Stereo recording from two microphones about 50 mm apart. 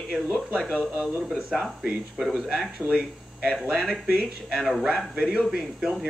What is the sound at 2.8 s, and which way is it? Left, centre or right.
Speech, left.